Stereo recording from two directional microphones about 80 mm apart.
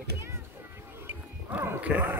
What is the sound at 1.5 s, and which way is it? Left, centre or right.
Speech, right.